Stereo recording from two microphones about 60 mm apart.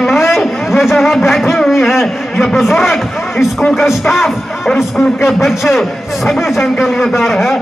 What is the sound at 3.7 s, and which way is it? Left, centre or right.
A man's voice, centre.